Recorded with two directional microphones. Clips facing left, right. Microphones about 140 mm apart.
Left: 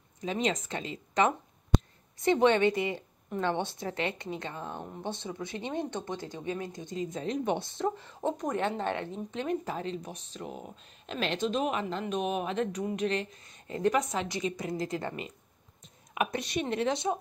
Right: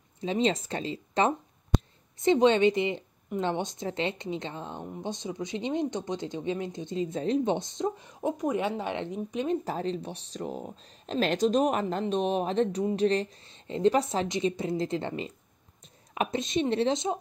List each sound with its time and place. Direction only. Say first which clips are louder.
0.2 s speech: right 4 dB; 30° right (ahead or behind)
9.7 s speech: right 4 dB; 35° right (ahead or behind)